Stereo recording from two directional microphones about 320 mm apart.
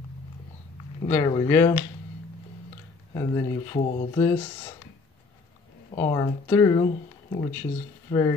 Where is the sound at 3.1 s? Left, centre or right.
Centre.